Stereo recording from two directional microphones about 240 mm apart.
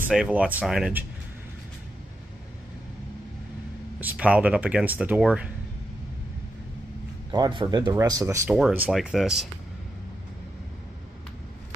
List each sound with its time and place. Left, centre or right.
0.0 s speech: centre
4.0 s speech: centre
7.2 s speech: centre